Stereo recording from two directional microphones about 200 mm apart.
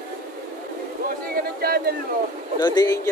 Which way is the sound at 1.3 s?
50° right (ahead or behind).